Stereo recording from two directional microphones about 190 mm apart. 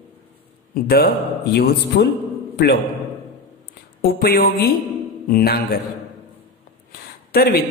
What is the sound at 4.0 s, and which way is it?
A woman's voice, 50° left (ahead or behind).